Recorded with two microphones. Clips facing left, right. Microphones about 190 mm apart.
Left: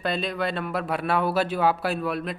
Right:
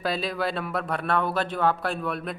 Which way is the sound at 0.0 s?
Centre (ahead or behind).